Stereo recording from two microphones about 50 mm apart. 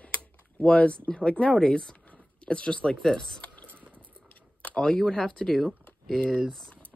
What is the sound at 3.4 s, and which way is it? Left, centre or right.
Whispering, left.